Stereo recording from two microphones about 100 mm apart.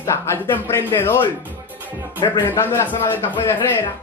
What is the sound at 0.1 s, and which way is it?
Speech, 25° left (ahead or behind).